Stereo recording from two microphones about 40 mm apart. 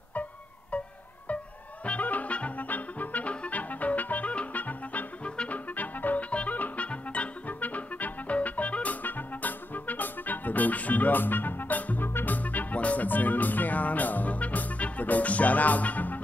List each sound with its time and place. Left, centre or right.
1.9 s music: left
5.5 s music: left